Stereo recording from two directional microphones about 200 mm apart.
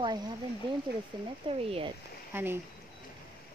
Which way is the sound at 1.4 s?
25° right (ahead or behind).